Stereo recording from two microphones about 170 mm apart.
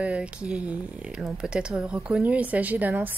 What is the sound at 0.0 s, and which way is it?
A woman's voice, 5° right (ahead or behind).